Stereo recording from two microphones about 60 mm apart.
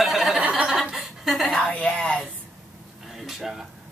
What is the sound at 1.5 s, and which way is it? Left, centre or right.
Speech, centre.